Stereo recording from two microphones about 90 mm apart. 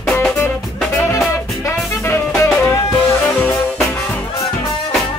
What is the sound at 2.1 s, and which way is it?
Music, 30° left (ahead or behind).